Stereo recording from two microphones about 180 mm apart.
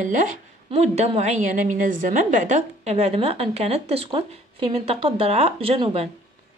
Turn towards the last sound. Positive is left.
turn(degrees=-30)  # may be behind; listen again after turning